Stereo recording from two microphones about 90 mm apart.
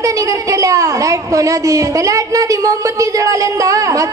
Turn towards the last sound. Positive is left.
turn(degrees=-40)  # may be behind; listen again after turning